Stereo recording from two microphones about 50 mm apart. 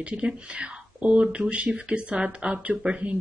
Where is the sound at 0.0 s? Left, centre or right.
Right.